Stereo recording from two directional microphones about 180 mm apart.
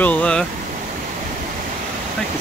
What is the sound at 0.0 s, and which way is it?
Speech, 5° left (ahead or behind).